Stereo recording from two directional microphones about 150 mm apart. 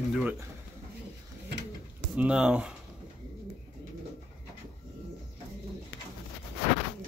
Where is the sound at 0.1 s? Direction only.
10° right (ahead or behind).